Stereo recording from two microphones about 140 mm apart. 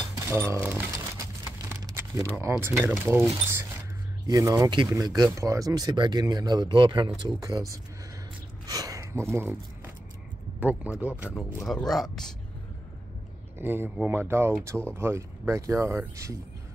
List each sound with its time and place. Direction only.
0.2 s speech: 15° right (ahead or behind)
1.9 s crumpling: 25° right (ahead or behind)
2.2 s speech: 15° right (ahead or behind)
4.3 s speech: 25° right (ahead or behind)
8.6 s a sound: 25° right (ahead or behind)
10.6 s speech: 10° right (ahead or behind)
11.6 s speech: centre (ahead or behind)
13.6 s speech: 15° right (ahead or behind)